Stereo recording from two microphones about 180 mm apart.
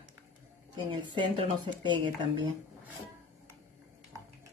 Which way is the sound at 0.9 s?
25° right (ahead or behind).